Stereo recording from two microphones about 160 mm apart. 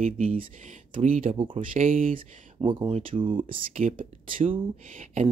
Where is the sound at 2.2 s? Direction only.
30° right (ahead or behind).